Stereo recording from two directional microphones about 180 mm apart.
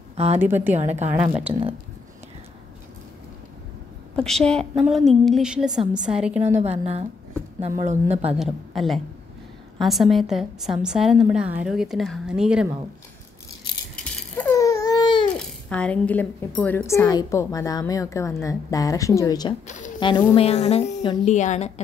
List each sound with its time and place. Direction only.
0.1 s a sound: 35° right (ahead or behind)
0.4 s a woman's voice: 10° right (ahead or behind)
0.7 s speech: 40° right (ahead or behind)
1.5 s speech: 30° right (ahead or behind)
4.2 s a woman's voice: 5° left (ahead or behind)
6.8 s speech: 35° right (ahead or behind)
8.4 s a woman's voice: centre (ahead or behind)
14.4 s baby cry: 15° left (ahead or behind)
15.3 s a woman's voice: 5° left (ahead or behind); by 21.8 s 35° left (ahead or behind)